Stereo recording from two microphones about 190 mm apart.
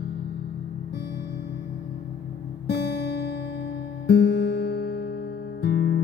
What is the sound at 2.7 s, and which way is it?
Music, 60° left (ahead or behind).